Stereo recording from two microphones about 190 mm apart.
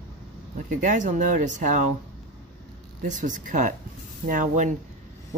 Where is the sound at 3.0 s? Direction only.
40° right (ahead or behind).